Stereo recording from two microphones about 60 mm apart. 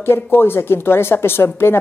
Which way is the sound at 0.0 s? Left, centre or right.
Left.